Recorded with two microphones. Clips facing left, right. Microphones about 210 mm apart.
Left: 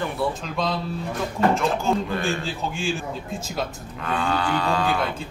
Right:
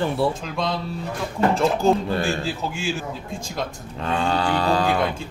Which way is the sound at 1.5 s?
35° right (ahead or behind).